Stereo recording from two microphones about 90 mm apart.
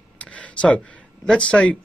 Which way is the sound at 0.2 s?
15° left (ahead or behind).